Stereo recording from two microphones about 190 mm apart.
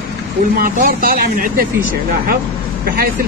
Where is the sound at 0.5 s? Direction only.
45° right (ahead or behind).